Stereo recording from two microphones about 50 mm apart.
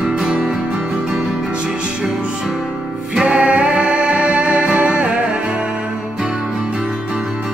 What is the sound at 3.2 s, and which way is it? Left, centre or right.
Music, right.